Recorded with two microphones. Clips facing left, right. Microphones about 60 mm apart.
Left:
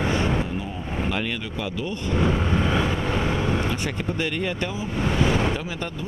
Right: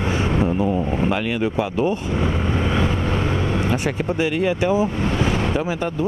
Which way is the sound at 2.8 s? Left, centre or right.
Centre.